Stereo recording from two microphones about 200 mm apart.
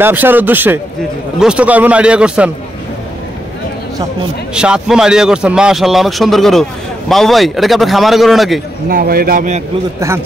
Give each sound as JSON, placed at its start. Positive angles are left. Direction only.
{"t": 0.0, "sound": "speech", "side_deg": -10}
{"t": 4.6, "sound": "speech", "side_deg": -5}
{"t": 8.8, "sound": "a man's voice", "side_deg": -45}
{"t": 9.9, "sound": "speech", "side_deg": -15}